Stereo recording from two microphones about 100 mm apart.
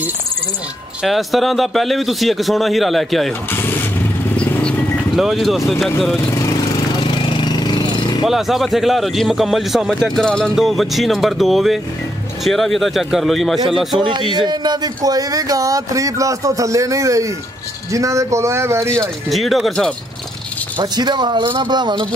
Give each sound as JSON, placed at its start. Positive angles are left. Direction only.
{"t": 1.0, "sound": "a man's voice", "side_deg": 0}
{"t": 4.4, "sound": "vehicle", "side_deg": 10}
{"t": 5.1, "sound": "a man's voice", "side_deg": 0}
{"t": 6.3, "sound": "vehicle", "side_deg": 35}
{"t": 7.0, "sound": "jackhammer", "side_deg": 55}
{"t": 8.2, "sound": "a man's voice", "side_deg": 0}
{"t": 14.3, "sound": "speech", "side_deg": -50}
{"t": 19.2, "sound": "a man's voice", "side_deg": 0}
{"t": 20.7, "sound": "speech", "side_deg": -45}